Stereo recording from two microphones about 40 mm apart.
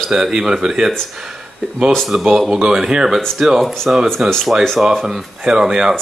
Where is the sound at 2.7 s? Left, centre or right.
Centre.